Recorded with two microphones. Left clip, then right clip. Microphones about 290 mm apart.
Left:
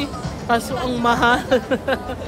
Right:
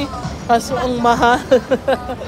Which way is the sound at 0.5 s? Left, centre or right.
Centre.